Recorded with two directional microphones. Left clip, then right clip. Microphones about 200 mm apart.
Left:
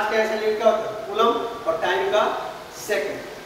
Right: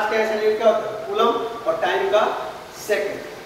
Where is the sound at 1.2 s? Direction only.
5° right (ahead or behind).